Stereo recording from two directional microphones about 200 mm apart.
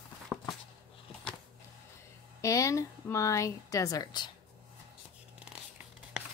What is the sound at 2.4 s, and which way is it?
A woman's voice, 15° left (ahead or behind).